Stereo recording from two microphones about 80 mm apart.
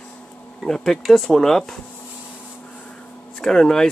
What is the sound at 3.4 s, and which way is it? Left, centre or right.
Speech, centre.